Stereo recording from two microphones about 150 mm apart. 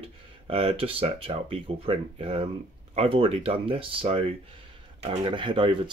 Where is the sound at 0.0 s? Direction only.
40° right (ahead or behind).